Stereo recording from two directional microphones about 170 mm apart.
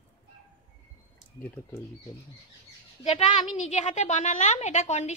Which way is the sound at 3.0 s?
40° left (ahead or behind).